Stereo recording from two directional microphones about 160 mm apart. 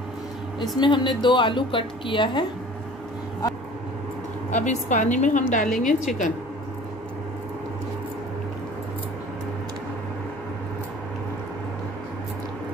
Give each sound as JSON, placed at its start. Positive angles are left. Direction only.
{"t": 0.6, "sound": "a woman's voice", "side_deg": 30}
{"t": 4.5, "sound": "a woman's voice", "side_deg": 50}